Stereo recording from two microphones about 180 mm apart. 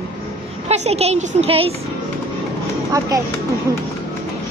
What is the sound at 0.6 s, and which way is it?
A woman's voice, 35° right (ahead or behind).